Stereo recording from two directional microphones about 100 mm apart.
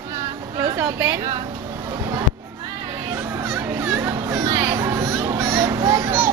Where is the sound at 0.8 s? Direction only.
30° right (ahead or behind).